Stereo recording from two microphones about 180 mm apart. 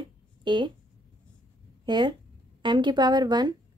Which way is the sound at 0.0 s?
25° right (ahead or behind).